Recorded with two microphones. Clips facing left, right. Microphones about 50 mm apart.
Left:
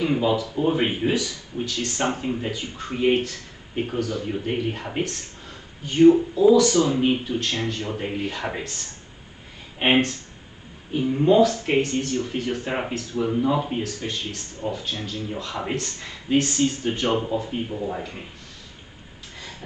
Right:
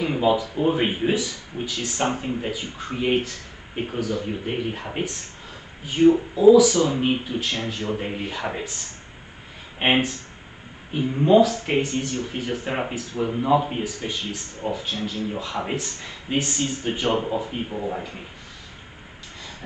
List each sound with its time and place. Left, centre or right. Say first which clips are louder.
0.0 s speech: right 1 dB; centre
2.0 s speech: right 1 dB; centre
9.8 s speech: left 1 dB; centre